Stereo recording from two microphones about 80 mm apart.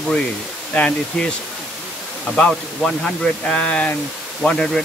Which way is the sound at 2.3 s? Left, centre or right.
Centre.